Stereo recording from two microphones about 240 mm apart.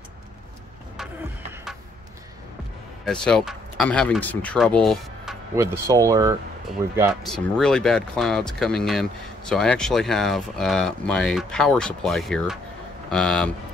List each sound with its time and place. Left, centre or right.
1.5 s music: centre
3.1 s speech: centre
5.6 s speech: centre
7.0 s speech: centre